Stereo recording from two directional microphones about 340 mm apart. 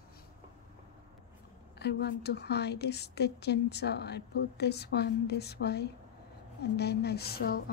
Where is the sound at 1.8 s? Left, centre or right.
Left.